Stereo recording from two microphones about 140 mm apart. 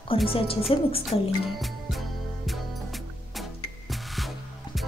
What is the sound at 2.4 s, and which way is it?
Music, centre (ahead or behind).